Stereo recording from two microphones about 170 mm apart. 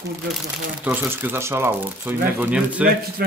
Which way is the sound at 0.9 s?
10° right (ahead or behind).